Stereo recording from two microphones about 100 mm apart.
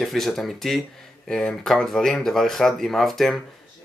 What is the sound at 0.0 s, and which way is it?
Speech, centre (ahead or behind).